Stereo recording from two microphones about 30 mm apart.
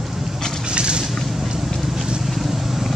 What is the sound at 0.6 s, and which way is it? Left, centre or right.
Vehicle, right.